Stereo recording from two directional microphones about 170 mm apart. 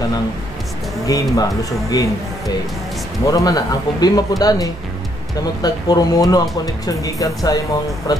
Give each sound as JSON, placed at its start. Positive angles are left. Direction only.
{"t": 1.0, "sound": "speech", "side_deg": 20}
{"t": 3.3, "sound": "speech", "side_deg": 20}